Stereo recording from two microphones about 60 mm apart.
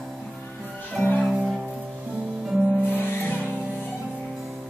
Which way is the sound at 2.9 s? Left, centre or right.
Left.